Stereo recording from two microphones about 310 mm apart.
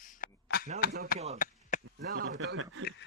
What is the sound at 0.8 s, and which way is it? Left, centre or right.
Speech, left.